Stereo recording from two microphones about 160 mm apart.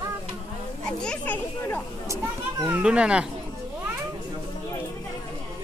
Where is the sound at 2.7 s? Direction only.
10° right (ahead or behind).